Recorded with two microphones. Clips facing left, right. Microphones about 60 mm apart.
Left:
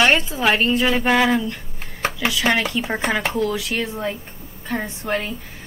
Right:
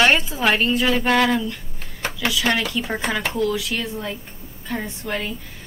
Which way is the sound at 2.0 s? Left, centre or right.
Centre.